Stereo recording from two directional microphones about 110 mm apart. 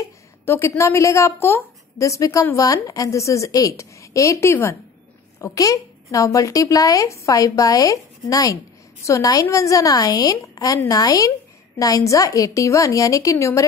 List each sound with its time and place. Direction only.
0.5 s a woman's voice: 25° left (ahead or behind)